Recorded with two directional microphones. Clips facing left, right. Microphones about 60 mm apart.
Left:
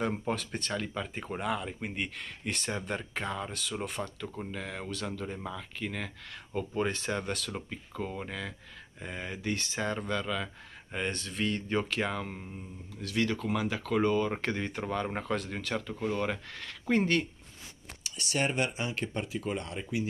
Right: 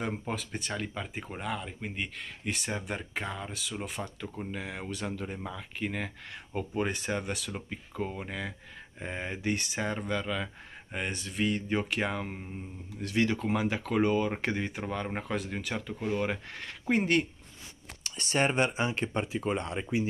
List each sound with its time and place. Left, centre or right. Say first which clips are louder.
0.3 s speech: left 2 dB; centre
4.5 s speech: right 1 dB; centre
9.0 s speech: right 3 dB; right
12.9 s speech: right 2 dB; right
18.0 s speech: right 3 dB; right